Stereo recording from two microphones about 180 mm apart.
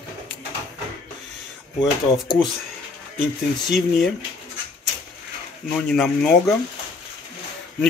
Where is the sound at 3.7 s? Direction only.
Centre (ahead or behind).